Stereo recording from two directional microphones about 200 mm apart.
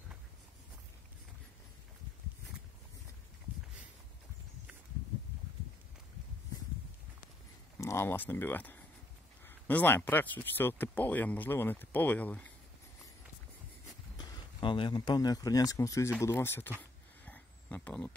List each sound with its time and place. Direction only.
7.8 s speech: 15° left (ahead or behind)
14.1 s speech: 20° left (ahead or behind)
17.2 s a sound: 5° left (ahead or behind)